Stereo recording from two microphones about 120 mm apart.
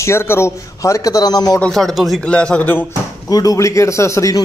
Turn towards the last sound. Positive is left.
turn(degrees=25)  # may be behind; listen again after turning